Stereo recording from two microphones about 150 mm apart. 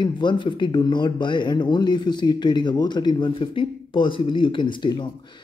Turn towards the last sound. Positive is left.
turn(degrees=30)  # may be behind; listen again after turning